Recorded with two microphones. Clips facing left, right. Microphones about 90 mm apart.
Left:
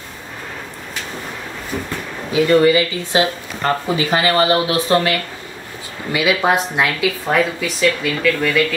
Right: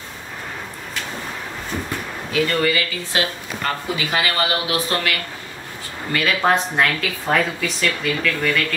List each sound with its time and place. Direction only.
2.3 s speech: 20° left (ahead or behind)
6.1 s speech: 10° left (ahead or behind)